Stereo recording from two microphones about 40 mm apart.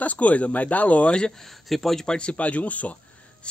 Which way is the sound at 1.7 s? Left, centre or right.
Centre.